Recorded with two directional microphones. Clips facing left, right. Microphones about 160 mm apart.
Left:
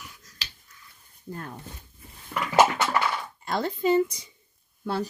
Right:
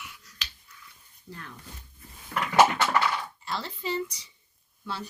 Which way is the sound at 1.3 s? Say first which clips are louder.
Left 7 dB; 45° left (ahead or behind).